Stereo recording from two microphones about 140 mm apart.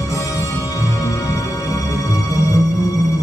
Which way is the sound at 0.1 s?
25° left (ahead or behind).